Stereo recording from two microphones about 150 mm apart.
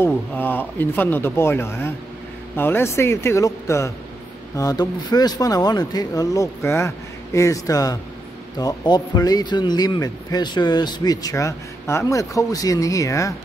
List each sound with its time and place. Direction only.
0.0 s speech: 15° left (ahead or behind)